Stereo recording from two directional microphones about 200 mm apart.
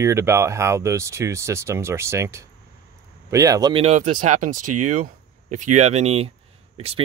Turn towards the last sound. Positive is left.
turn(degrees=-30)  # may be behind; listen again after turning